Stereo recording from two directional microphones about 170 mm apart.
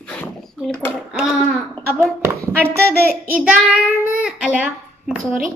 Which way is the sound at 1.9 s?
15° right (ahead or behind).